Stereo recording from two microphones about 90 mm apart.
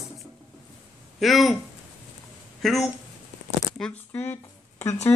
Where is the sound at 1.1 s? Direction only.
Centre (ahead or behind).